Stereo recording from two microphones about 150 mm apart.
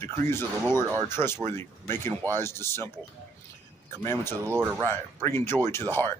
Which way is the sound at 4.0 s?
15° left (ahead or behind).